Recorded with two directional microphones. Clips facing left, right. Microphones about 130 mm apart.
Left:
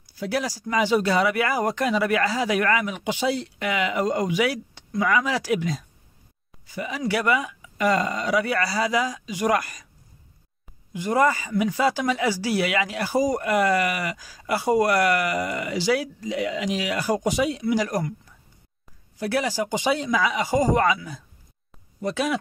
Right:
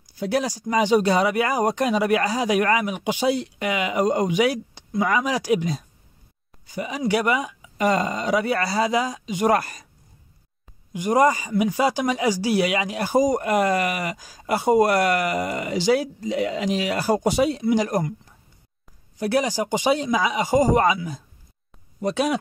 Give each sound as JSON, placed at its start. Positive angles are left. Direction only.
{"t": 0.2, "sound": "speech", "side_deg": -25}
{"t": 10.9, "sound": "speech", "side_deg": -15}
{"t": 19.1, "sound": "speech", "side_deg": -20}